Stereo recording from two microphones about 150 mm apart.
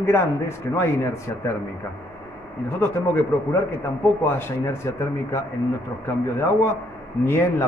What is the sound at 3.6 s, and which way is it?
Speech, 15° left (ahead or behind).